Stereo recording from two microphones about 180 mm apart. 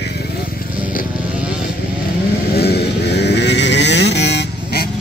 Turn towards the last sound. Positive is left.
turn(degrees=65)  # may be behind; listen again after turning